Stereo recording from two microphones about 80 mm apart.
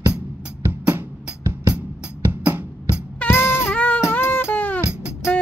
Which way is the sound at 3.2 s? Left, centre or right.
Left.